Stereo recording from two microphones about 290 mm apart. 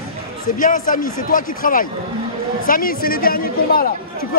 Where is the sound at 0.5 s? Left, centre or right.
Left.